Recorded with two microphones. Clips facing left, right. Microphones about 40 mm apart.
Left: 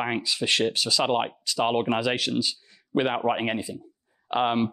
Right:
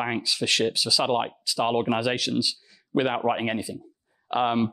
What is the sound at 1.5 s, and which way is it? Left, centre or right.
Speech, left.